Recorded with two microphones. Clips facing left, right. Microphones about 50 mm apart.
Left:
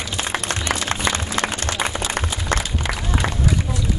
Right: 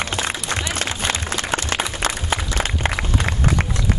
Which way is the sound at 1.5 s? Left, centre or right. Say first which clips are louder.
Right 1 dB; right.